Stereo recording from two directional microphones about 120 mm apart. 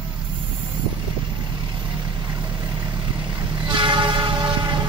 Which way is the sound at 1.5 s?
40° right (ahead or behind).